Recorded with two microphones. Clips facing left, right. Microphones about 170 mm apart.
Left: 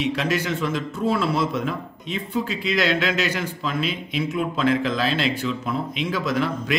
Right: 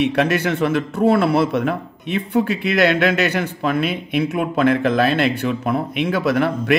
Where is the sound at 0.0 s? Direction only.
60° right (ahead or behind).